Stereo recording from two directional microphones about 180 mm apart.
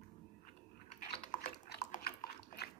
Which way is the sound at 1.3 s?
50° left (ahead or behind).